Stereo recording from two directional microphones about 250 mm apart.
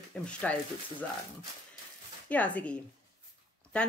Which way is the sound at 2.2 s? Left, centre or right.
Centre.